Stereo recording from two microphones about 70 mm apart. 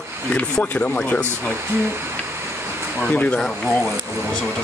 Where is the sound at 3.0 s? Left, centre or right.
Centre.